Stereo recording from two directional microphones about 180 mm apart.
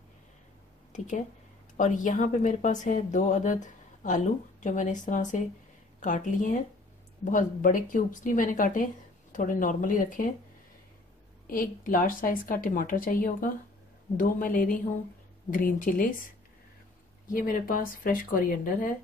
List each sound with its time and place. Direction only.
0.9 s speech: 45° left (ahead or behind)
11.4 s speech: 50° left (ahead or behind)
17.3 s speech: 50° left (ahead or behind)